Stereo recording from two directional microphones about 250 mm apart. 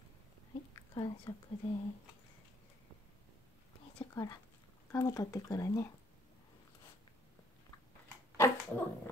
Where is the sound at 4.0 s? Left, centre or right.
Centre.